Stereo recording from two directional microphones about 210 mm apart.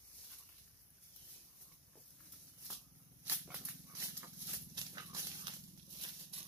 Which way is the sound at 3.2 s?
10° right (ahead or behind).